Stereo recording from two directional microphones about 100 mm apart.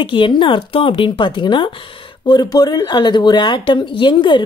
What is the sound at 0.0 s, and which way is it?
Speech, 55° left (ahead or behind).